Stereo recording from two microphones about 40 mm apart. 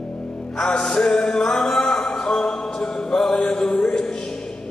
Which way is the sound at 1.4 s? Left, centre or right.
Centre.